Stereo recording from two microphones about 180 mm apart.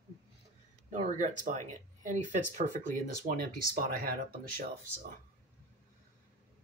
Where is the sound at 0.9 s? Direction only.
40° right (ahead or behind).